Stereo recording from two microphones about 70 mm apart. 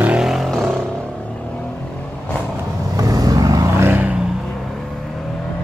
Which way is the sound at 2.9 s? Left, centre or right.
Right.